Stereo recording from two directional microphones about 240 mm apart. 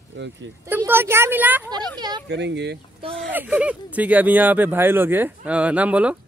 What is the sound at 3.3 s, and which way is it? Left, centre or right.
Speech, centre.